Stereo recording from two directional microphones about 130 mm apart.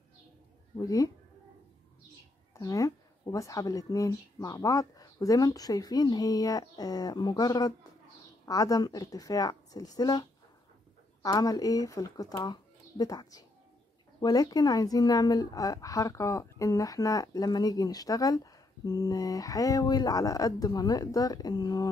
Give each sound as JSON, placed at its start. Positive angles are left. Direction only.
{"t": 0.7, "sound": "a woman's voice", "side_deg": 25}
{"t": 2.5, "sound": "a woman's voice", "side_deg": 25}
{"t": 11.2, "sound": "a woman's voice", "side_deg": 30}